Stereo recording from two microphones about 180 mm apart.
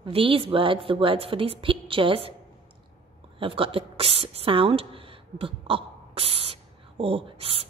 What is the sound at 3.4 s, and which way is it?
Speech, 30° right (ahead or behind).